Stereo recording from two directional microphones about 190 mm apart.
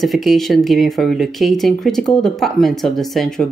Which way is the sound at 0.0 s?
Centre (ahead or behind).